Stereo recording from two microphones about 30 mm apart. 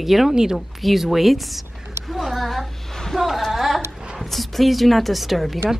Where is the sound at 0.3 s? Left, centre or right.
Right.